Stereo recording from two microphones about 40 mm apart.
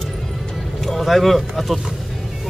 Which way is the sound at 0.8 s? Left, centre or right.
Centre.